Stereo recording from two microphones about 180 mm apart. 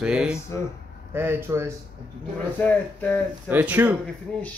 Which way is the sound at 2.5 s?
10° left (ahead or behind).